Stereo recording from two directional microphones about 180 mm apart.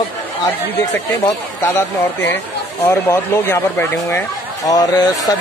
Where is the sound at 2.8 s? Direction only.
10° left (ahead or behind).